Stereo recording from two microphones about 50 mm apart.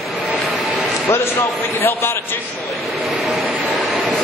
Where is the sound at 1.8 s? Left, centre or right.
Left.